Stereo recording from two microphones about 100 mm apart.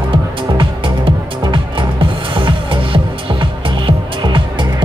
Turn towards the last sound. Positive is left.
turn(degrees=-50)  # may be behind; listen again after turning